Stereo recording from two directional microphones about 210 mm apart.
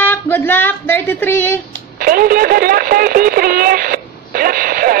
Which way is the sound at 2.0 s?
45° right (ahead or behind).